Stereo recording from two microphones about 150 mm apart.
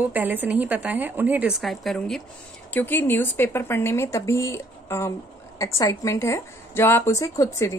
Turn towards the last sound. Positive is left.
turn(degrees=20)  # may be behind; listen again after turning